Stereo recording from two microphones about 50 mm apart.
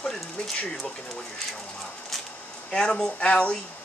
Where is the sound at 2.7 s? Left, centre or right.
Centre.